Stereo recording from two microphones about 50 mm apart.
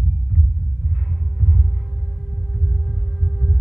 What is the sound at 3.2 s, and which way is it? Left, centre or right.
Heart sounds, centre.